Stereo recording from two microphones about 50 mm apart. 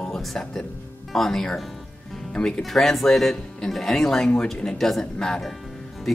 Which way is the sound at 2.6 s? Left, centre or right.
Centre.